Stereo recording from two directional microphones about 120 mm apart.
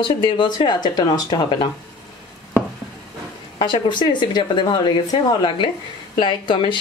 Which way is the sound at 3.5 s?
40° left (ahead or behind).